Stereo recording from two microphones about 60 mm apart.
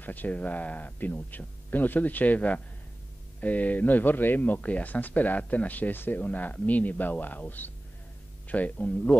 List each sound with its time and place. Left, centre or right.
0.0 s speech: left